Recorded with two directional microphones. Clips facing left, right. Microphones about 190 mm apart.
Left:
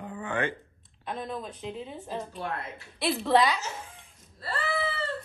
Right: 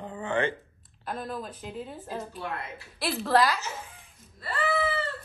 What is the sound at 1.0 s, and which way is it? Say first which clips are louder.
A woman's voice: even; 5° right (ahead or behind).